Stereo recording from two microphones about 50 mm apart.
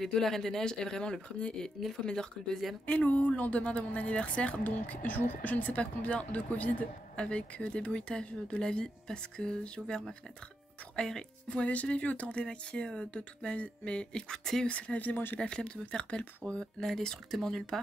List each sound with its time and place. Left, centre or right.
0.0 s speech: centre
2.9 s speech: left; by 11.2 s centre
11.4 s speech: left; by 14.7 s centre
14.7 s speech: left
15.4 s speech: centre